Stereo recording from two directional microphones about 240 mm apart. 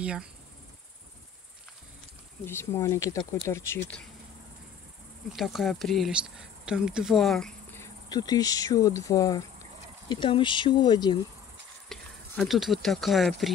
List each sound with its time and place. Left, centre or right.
0.0 s speech: centre
2.4 s speech: centre
5.3 s speech: centre
11.9 s speech: centre